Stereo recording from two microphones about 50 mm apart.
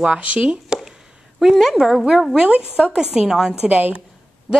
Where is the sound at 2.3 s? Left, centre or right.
Centre.